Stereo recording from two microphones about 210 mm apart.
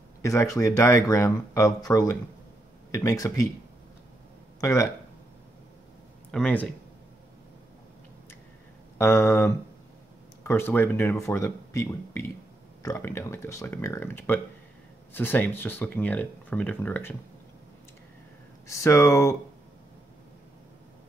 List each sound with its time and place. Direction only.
0.2 s speech: 15° left (ahead or behind)
4.6 s speech: 15° left (ahead or behind)
6.3 s speech: 5° left (ahead or behind)
8.9 s speech: 10° left (ahead or behind)
18.7 s speech: 15° left (ahead or behind)